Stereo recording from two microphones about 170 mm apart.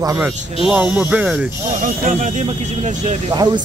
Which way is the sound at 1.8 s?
50° right (ahead or behind).